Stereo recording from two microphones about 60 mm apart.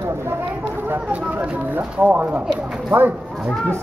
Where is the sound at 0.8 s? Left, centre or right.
Right.